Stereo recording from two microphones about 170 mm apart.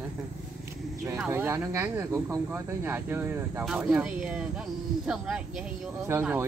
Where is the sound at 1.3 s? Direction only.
15° right (ahead or behind).